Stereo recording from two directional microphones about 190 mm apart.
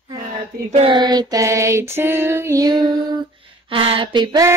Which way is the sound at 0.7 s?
30° right (ahead or behind).